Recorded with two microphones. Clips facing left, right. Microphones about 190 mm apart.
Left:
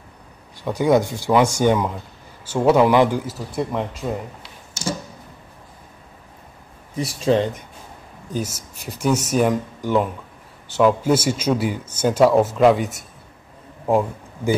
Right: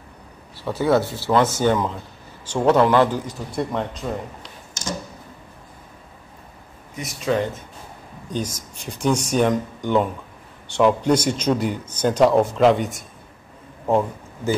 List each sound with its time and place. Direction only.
0.6 s speech: 15° left (ahead or behind)
7.0 s speech: 30° left (ahead or behind)
8.3 s speech: 5° left (ahead or behind)